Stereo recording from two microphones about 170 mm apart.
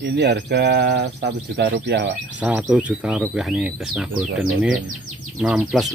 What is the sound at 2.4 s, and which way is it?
Speech, 10° right (ahead or behind).